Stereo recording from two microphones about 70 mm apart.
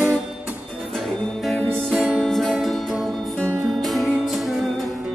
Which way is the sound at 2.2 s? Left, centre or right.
Centre.